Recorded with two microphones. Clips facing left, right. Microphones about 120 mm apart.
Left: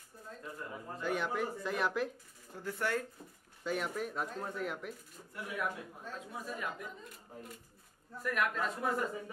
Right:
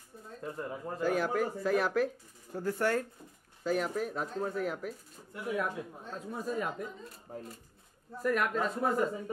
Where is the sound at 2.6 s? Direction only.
45° right (ahead or behind).